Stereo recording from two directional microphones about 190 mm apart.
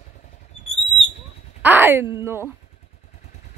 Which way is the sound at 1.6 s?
10° right (ahead or behind).